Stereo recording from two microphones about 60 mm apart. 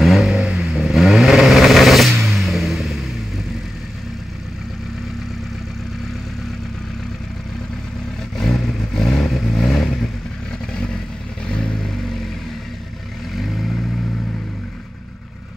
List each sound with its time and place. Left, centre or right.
0.0 s vehicle: centre
8.4 s vehicle: centre
10.7 s vehicle: centre
13.4 s vehicle: centre